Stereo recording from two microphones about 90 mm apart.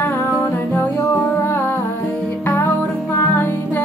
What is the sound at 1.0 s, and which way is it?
Music, 35° left (ahead or behind).